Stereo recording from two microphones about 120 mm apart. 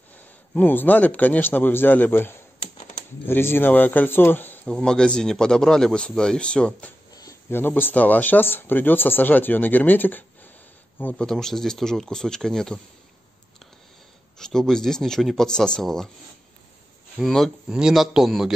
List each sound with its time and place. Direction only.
0.2 s speech: 15° left (ahead or behind)
7.2 s speech: 25° left (ahead or behind)
11.2 s speech: 5° left (ahead or behind)
14.4 s speech: 5° left (ahead or behind)
17.2 s speech: centre (ahead or behind)